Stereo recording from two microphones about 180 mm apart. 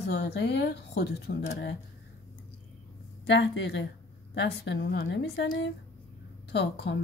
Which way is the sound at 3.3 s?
75° left (ahead or behind).